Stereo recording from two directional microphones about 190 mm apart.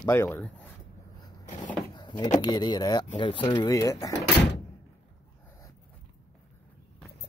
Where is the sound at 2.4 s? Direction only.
20° left (ahead or behind).